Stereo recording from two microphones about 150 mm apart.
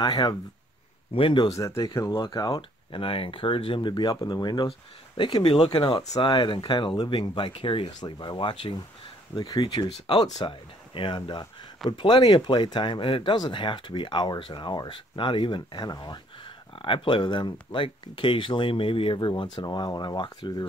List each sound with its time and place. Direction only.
0.0 s speech: 30° left (ahead or behind)